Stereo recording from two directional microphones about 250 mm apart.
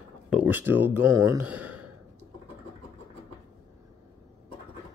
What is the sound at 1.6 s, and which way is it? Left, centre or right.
Sigh, right.